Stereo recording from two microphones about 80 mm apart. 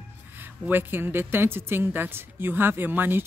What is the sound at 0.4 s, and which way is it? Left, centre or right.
Speech, right.